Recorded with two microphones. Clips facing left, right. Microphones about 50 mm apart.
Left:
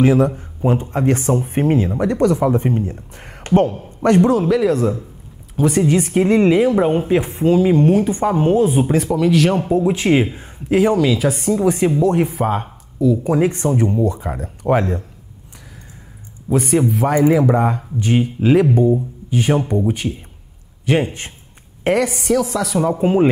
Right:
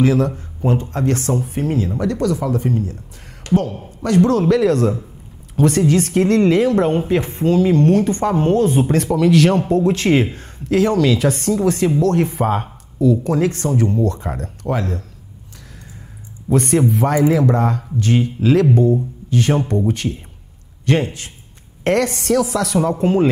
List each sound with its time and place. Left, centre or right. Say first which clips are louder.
0.0 s speech: left 2 dB; left
1.4 s a man's voice: left 4 dB; left
4.3 s a woman's voice: right 1 dB; centre
12.3 s speech: right 1 dB; centre
13.2 s a woman's voice: left 2 dB; centre
14.7 s speech: left 5 dB; left
16.4 s speech: right 1 dB; centre
17.1 s a woman's voice: left 3 dB; centre